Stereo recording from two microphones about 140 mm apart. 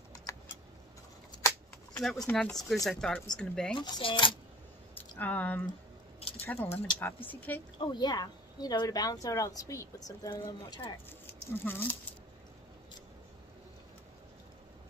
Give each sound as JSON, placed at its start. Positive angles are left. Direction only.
{"t": 0.1, "sound": "keys jangling", "side_deg": 25}
{"t": 2.0, "sound": "speech", "side_deg": 5}
{"t": 3.7, "sound": "speech", "side_deg": 35}
{"t": 4.9, "sound": "speech", "side_deg": 10}
{"t": 6.1, "sound": "a sound", "side_deg": 45}
{"t": 6.4, "sound": "speech", "side_deg": 15}
{"t": 7.8, "sound": "speech", "side_deg": 30}
{"t": 11.6, "sound": "speech", "side_deg": 15}